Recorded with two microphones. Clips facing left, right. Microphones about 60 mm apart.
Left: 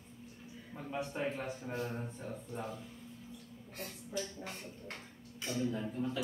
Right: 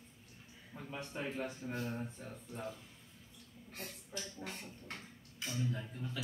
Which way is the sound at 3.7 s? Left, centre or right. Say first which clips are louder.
Left 6 dB; centre.